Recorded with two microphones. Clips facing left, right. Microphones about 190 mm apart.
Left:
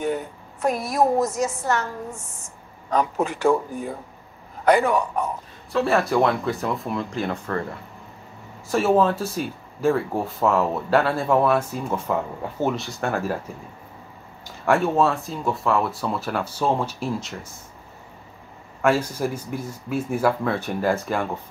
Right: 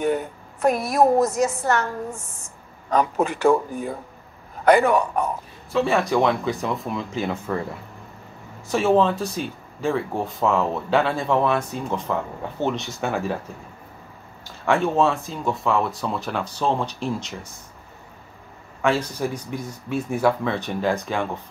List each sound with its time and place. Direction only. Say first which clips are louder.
0.0 s a woman's voice: right 3 dB; 60° right (ahead or behind)
2.9 s a man's voice: right 2 dB; 60° right (ahead or behind)
4.6 s a man's voice: right 2 dB; 60° right (ahead or behind)
5.7 s speech: even; centre (ahead or behind)
8.6 s speech: even; centre (ahead or behind)
14.4 s speech: left 1 dB; 5° left (ahead or behind)
18.8 s speech: left 1 dB; 5° left (ahead or behind)